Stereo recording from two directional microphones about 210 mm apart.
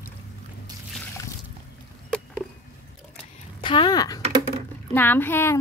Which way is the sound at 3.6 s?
20° left (ahead or behind).